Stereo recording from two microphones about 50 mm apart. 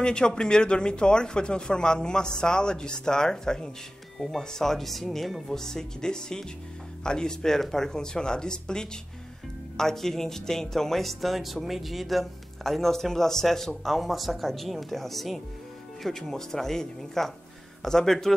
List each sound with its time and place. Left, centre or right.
0.0 s speech: centre